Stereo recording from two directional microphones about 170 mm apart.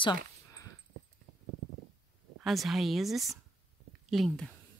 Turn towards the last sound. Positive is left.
turn(degrees=5)  # may be behind; listen again after turning